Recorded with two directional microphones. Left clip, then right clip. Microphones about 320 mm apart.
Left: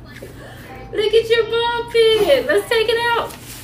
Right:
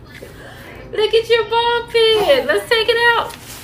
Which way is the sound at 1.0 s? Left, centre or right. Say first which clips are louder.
Right 1 dB; centre.